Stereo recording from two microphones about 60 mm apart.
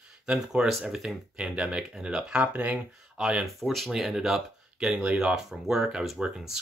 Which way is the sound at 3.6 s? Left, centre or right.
Centre.